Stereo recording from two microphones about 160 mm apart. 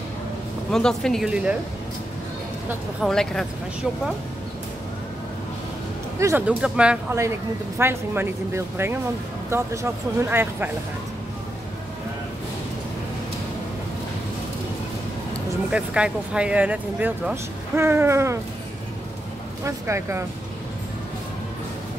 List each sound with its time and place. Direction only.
0.7 s speech: 5° left (ahead or behind)
3.0 s speech: 5° left (ahead or behind)
6.1 s speech: 15° right (ahead or behind)
7.2 s speech: 15° right (ahead or behind)
15.7 s speech: 5° right (ahead or behind)
19.6 s speech: 15° right (ahead or behind)